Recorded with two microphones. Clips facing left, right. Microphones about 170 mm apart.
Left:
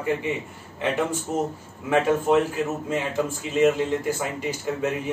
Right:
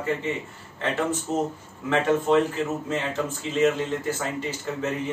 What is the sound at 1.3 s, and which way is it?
A man's voice, 10° left (ahead or behind).